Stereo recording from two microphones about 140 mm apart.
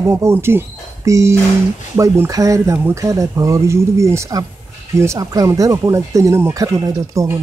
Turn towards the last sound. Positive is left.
turn(degrees=-25)  # may be behind; listen again after turning